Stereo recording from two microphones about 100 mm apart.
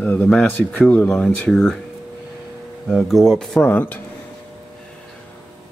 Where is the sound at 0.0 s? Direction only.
20° left (ahead or behind).